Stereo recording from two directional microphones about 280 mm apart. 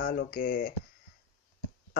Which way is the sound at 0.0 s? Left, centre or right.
Left.